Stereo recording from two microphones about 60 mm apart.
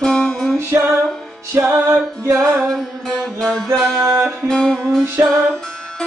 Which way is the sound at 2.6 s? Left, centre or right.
Centre.